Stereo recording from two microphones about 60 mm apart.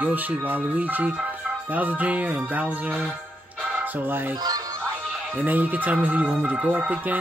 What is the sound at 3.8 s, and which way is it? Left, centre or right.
Music, right.